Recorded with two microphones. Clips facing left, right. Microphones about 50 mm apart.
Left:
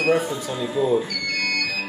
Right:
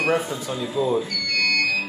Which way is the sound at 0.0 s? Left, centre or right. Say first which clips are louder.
Left 2 dB; centre.